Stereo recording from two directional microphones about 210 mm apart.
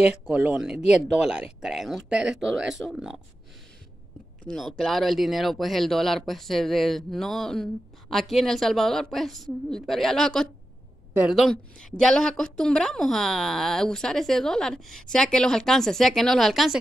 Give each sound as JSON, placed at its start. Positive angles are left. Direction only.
{"t": 0.0, "sound": "speech", "side_deg": -5}
{"t": 2.1, "sound": "speech", "side_deg": -55}
{"t": 2.8, "sound": "speech", "side_deg": 0}
{"t": 4.5, "sound": "speech", "side_deg": 0}